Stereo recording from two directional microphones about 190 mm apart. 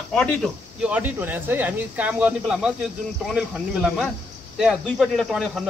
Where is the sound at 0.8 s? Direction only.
10° right (ahead or behind).